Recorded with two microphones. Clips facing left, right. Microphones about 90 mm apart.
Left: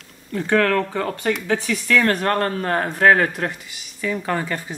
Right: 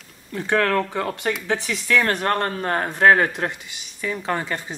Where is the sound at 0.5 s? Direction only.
20° right (ahead or behind).